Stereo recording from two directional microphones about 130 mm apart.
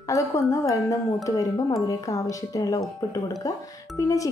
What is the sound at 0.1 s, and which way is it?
Speech, 25° left (ahead or behind).